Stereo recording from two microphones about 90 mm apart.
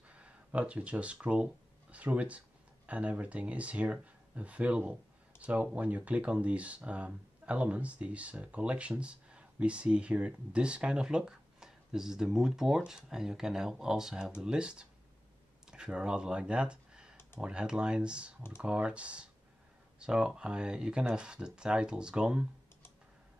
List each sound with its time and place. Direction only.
0.1 s speech: 15° right (ahead or behind)